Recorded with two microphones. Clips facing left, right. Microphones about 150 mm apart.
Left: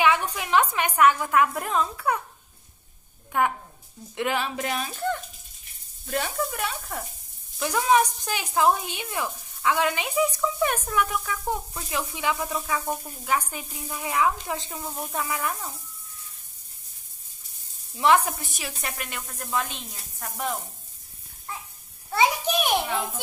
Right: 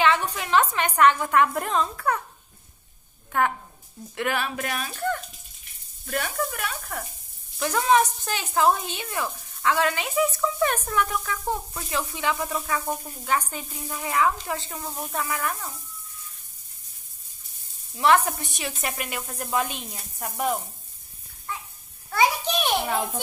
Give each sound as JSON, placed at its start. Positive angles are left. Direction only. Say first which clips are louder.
{"t": 0.0, "sound": "a woman's voice", "louder": "even", "side_deg": 10}
{"t": 3.3, "sound": "a woman's voice", "louder": "even", "side_deg": 15}
{"t": 7.5, "sound": "speech", "louder": "right 1 dB", "side_deg": 10}
{"t": 17.9, "sound": "speech", "louder": "even", "side_deg": 10}
{"t": 18.4, "sound": "speech", "louder": "right 3 dB", "side_deg": 0}
{"t": 22.5, "sound": "a child's voice", "louder": "left 1 dB", "side_deg": 10}
{"t": 22.8, "sound": "a child's voice", "louder": "right 2 dB", "side_deg": -45}